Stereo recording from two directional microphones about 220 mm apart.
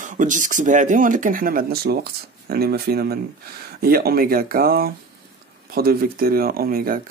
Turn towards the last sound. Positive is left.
turn(degrees=-40)  # may be behind; listen again after turning